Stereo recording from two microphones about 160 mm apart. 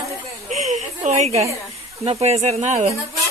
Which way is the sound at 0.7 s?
45° right (ahead or behind).